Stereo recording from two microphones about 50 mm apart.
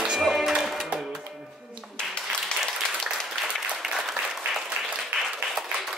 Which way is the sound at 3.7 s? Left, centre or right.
Centre.